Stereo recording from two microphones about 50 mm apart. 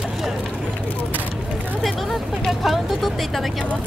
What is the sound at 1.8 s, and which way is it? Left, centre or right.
Vehicle, centre.